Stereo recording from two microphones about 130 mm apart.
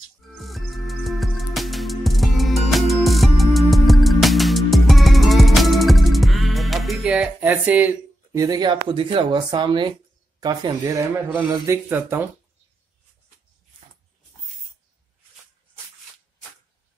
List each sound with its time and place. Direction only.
0.4 s music: centre (ahead or behind)
7.1 s music: 10° right (ahead or behind)
8.3 s speech: 30° right (ahead or behind)
11.6 s speech: 20° right (ahead or behind)